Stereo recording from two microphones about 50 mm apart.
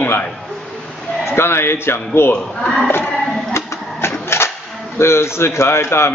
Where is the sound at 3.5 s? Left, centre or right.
Left.